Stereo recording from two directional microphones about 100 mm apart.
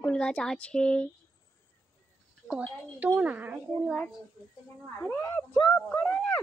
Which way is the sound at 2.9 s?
15° right (ahead or behind).